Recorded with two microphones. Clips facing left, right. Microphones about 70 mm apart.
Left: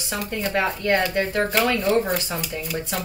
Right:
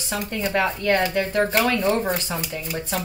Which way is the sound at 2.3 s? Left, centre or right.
Centre.